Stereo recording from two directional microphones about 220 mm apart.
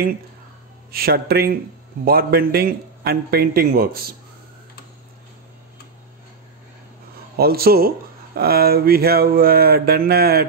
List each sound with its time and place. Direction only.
0.9 s a man's voice: 45° right (ahead or behind)
7.3 s a man's voice: 45° right (ahead or behind)